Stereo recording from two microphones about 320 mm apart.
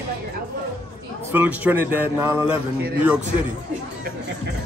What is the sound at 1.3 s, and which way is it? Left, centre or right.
Speech, centre.